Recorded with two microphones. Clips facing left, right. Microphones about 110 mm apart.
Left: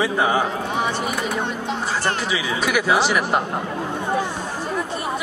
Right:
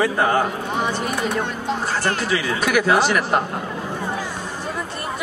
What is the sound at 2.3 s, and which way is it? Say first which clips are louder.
A woman's voice: right 2 dB; 5° left (ahead or behind).